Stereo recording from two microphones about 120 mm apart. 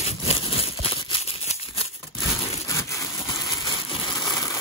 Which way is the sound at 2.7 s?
25° left (ahead or behind).